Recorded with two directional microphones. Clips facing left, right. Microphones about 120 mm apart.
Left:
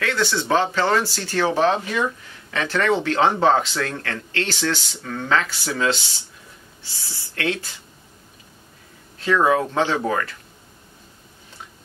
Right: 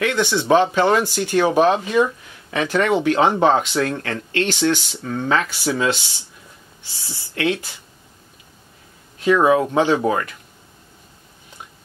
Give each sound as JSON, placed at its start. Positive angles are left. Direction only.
{"t": 0.0, "sound": "speech", "side_deg": -20}
{"t": 9.2, "sound": "speech", "side_deg": -15}